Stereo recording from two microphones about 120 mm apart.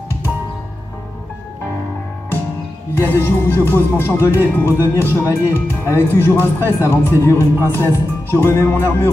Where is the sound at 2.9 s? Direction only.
20° left (ahead or behind).